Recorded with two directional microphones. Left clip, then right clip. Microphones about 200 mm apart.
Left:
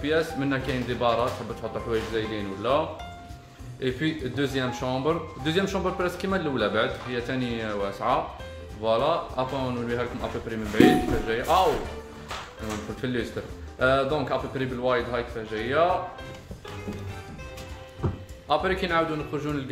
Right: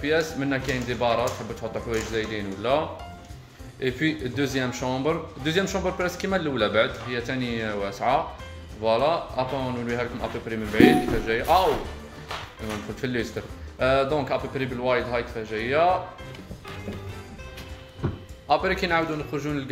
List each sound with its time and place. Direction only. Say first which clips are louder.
0.0 s speech: right 1 dB; 10° right (ahead or behind)
3.8 s speech: right 2 dB; 10° right (ahead or behind)
13.0 s speech: right 2 dB; 15° right (ahead or behind)
18.5 s speech: right 2 dB; 15° right (ahead or behind)